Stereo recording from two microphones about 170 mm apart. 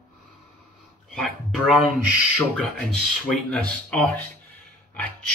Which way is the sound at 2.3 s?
Centre (ahead or behind).